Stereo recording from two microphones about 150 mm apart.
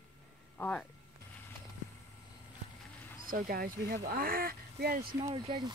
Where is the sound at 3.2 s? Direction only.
70° right (ahead or behind).